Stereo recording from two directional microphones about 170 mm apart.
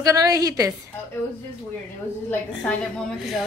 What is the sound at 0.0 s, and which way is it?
Speech, 20° right (ahead or behind).